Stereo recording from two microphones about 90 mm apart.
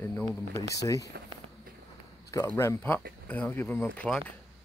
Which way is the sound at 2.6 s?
25° left (ahead or behind).